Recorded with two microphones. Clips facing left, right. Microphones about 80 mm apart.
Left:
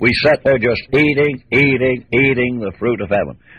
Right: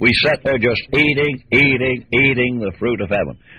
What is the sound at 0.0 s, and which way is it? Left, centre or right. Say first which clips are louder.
A man's voice: left 3 dB; centre.